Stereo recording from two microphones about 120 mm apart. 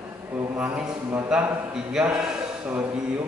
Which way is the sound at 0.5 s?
10° right (ahead or behind).